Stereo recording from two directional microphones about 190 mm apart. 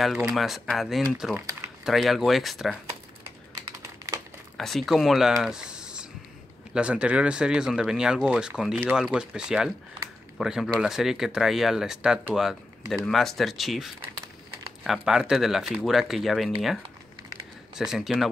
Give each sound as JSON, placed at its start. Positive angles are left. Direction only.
{"t": 0.0, "sound": "speech", "side_deg": 0}
{"t": 3.5, "sound": "computer keyboard", "side_deg": -20}
{"t": 4.6, "sound": "speech", "side_deg": 0}
{"t": 17.7, "sound": "speech", "side_deg": 0}